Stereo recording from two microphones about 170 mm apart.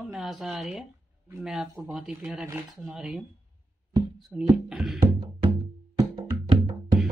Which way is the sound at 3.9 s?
20° right (ahead or behind).